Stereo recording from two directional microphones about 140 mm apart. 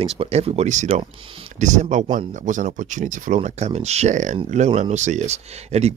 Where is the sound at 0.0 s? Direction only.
45° right (ahead or behind).